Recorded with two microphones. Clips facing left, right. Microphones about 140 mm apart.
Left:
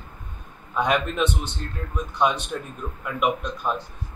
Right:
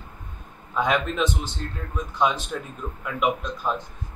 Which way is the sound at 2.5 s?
Centre (ahead or behind).